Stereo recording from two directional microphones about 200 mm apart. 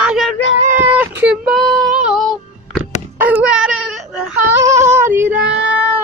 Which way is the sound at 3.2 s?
5° right (ahead or behind).